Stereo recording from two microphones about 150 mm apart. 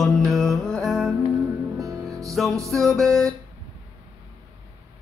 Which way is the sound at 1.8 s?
20° right (ahead or behind).